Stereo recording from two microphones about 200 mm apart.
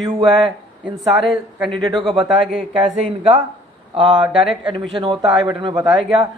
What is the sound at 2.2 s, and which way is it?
Speech, centre (ahead or behind).